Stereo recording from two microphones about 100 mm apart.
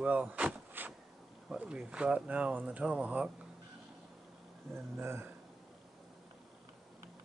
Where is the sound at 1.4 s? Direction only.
10° right (ahead or behind).